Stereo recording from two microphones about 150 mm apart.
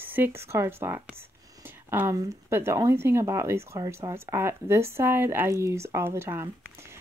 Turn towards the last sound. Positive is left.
turn(degrees=-15)  # may be behind; listen again after turning